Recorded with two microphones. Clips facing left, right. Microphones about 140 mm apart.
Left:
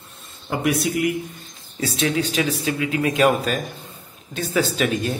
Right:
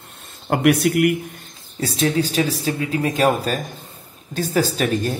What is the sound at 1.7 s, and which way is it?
Speech, 35° right (ahead or behind).